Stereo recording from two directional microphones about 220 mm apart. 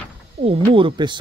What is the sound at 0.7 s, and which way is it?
Speech, 25° right (ahead or behind).